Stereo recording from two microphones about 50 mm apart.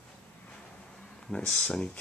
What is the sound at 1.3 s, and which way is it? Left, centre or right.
Speech, centre.